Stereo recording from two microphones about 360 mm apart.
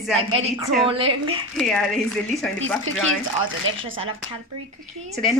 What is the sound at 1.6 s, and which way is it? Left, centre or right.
Speech, centre.